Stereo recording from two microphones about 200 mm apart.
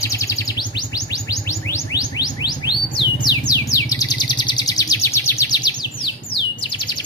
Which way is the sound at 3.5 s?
15° left (ahead or behind).